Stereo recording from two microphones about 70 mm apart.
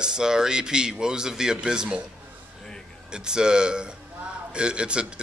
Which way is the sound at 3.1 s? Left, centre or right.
Centre.